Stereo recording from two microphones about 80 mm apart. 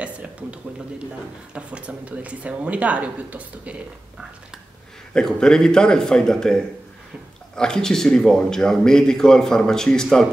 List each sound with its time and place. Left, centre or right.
0.0 s a sound: centre
1.5 s speech: centre
5.1 s a man's voice: centre